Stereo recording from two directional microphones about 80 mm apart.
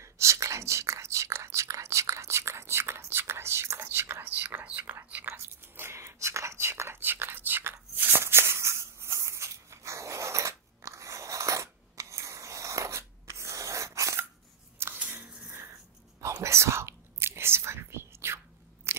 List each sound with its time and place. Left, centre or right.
0.0 s whispering: right
7.7 s a sound: right
15.0 s scissors: right
16.2 s whispering: right
18.9 s biting: right